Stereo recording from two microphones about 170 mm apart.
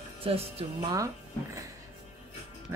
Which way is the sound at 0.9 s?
20° right (ahead or behind).